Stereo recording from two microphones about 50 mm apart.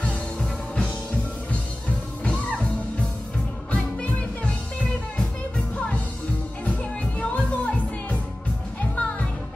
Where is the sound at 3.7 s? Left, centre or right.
Left.